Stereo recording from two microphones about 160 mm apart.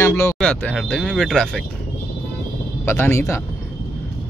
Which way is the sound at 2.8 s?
15° left (ahead or behind).